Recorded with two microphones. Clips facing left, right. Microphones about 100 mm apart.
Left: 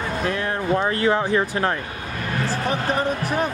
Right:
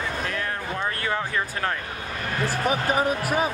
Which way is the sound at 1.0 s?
20° left (ahead or behind).